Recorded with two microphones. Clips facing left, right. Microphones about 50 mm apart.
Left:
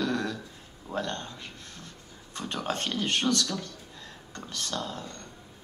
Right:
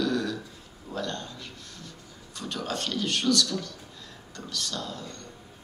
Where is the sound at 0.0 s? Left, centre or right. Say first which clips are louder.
Right 2 dB; left.